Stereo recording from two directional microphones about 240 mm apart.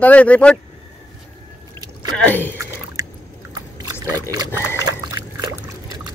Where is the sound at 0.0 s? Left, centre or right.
Centre.